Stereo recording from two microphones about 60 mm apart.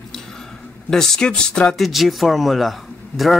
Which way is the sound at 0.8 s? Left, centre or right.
Centre.